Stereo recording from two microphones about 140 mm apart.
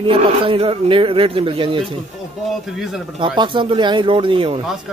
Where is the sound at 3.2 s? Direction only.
35° right (ahead or behind).